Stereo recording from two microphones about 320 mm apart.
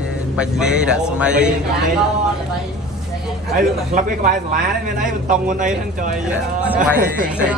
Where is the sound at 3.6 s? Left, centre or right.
Right.